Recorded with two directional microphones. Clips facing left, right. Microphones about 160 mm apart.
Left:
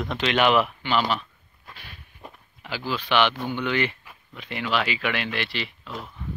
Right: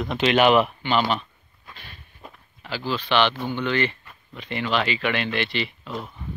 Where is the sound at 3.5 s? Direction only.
10° left (ahead or behind).